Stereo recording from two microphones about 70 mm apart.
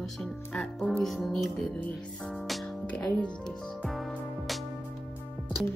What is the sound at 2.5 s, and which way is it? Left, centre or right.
Music, centre.